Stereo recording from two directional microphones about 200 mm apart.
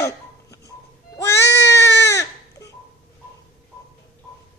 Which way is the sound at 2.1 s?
15° left (ahead or behind).